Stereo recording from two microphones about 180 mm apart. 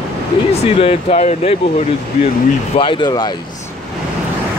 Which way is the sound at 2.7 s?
30° left (ahead or behind).